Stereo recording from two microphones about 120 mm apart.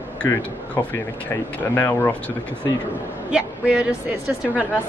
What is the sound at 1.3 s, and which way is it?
Speech, 20° left (ahead or behind).